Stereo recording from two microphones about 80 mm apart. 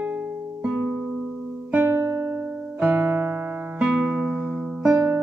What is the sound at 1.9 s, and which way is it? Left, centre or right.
Music, right.